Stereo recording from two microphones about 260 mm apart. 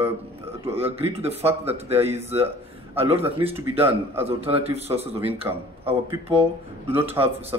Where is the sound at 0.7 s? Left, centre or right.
Right.